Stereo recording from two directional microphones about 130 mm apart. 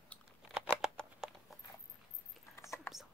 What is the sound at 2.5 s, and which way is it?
Whispering, 20° left (ahead or behind).